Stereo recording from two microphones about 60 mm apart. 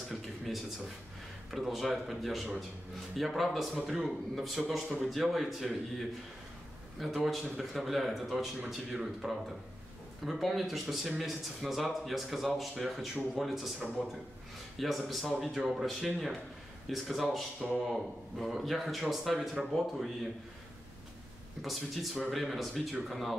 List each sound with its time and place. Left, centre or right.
0.1 s a sound: centre
1.5 s speech: centre
21.5 s speech: centre